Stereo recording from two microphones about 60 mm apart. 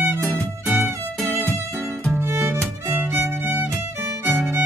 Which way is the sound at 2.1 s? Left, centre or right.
Right.